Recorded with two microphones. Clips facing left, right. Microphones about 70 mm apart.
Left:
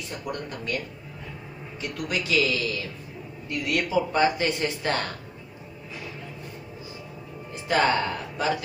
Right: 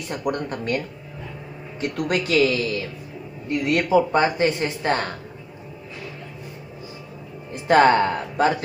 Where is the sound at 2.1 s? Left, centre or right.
Right.